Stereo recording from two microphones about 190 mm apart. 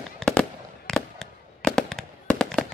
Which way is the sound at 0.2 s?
5° left (ahead or behind).